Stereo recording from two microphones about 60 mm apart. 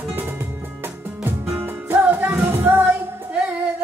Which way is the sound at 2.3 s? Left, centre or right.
Right.